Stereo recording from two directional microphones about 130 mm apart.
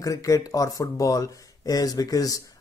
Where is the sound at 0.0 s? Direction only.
25° left (ahead or behind).